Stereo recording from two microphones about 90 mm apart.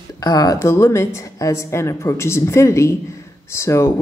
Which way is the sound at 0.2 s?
45° left (ahead or behind).